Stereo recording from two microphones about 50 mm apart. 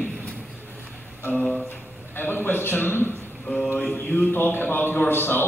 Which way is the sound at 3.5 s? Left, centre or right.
Left.